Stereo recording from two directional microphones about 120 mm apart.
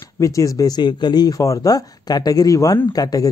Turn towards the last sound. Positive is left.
turn(degrees=30)  # may be behind; listen again after turning